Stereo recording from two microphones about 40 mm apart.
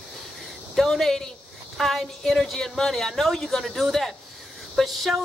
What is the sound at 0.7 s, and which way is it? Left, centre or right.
A man's voice, centre.